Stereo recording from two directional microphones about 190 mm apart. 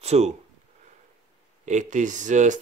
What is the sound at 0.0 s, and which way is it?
Speech, 35° right (ahead or behind).